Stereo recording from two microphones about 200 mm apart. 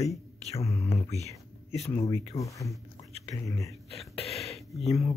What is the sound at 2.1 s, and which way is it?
Speech, 15° left (ahead or behind).